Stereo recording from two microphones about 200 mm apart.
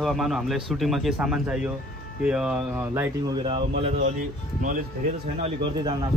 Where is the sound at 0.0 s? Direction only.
Centre (ahead or behind).